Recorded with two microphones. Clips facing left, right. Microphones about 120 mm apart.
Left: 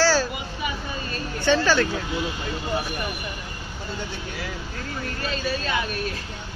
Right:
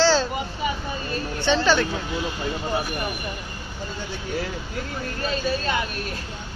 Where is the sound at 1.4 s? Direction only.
20° right (ahead or behind).